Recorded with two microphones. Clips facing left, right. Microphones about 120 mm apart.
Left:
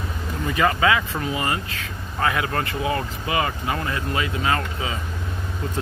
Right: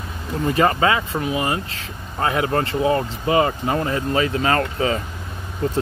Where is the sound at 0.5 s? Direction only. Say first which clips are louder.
Right 2 dB; 35° right (ahead or behind).